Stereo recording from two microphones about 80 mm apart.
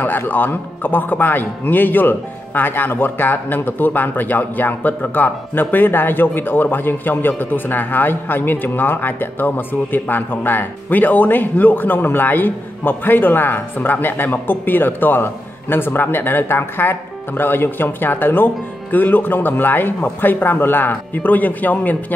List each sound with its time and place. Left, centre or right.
0.0 s a man's voice: left